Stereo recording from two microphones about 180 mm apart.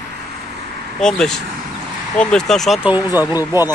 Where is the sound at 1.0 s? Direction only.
Centre (ahead or behind); by 3.7 s 15° right (ahead or behind).